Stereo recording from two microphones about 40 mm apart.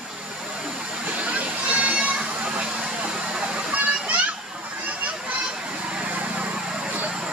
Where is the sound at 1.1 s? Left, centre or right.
Right.